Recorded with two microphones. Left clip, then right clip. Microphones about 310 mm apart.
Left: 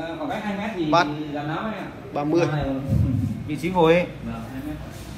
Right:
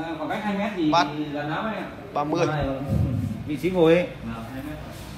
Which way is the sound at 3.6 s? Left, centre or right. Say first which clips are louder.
Left 1 dB; centre.